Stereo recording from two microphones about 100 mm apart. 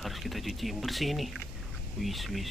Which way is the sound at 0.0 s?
Centre (ahead or behind).